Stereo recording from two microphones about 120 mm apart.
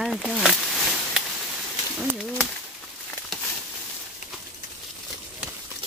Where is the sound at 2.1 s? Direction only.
5° right (ahead or behind).